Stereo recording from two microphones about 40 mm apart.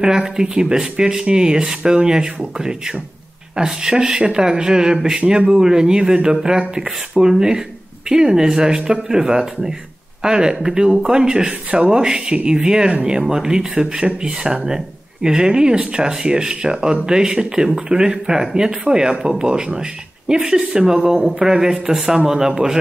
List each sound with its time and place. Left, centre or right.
0.0 s speech: centre